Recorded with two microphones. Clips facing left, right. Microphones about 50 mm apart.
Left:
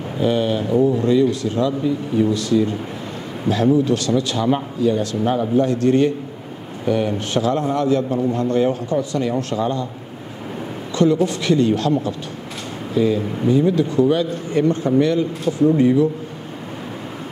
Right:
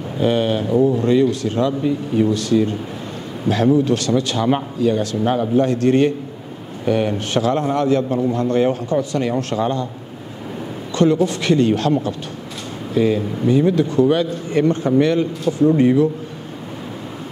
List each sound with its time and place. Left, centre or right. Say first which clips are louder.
0.2 s speech: right 1 dB; right
0.7 s a man's voice: right 1 dB; right
1.0 s speech: right 1 dB; right
10.9 s a man's voice: right 1 dB; right
15.7 s a man's voice: right 1 dB; right